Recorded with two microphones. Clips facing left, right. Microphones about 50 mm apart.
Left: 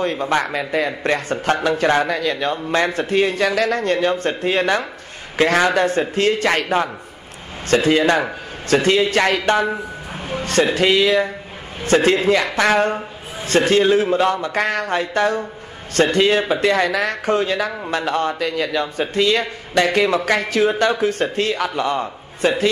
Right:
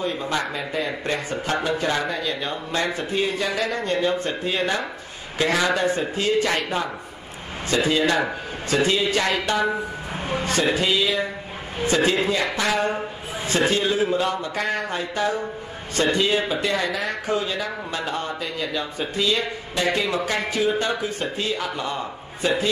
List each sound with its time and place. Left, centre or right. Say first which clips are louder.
0.0 s speech: left 6 dB; left
10.2 s music: even; right
10.5 s speech: left 6 dB; left